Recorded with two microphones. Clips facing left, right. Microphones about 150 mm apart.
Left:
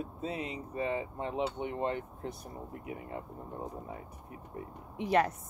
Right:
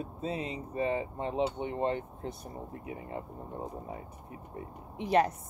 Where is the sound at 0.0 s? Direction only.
30° right (ahead or behind).